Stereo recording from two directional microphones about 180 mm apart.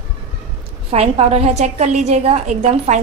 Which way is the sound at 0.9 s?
35° right (ahead or behind).